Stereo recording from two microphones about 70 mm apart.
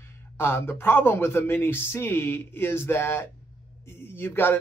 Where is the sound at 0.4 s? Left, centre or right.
Left.